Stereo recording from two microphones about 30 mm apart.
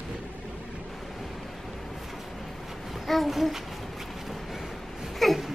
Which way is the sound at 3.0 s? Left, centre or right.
Centre.